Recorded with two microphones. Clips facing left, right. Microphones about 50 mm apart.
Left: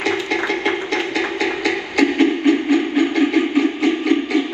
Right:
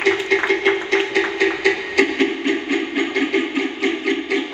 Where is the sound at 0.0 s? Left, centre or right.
Right.